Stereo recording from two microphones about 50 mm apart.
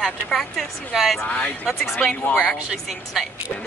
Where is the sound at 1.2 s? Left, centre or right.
Left.